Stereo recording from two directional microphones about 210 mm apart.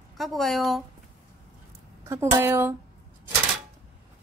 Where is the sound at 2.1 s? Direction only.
10° right (ahead or behind).